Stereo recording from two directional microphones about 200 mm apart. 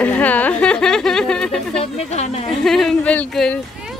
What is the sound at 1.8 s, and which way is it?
Speech, 30° left (ahead or behind).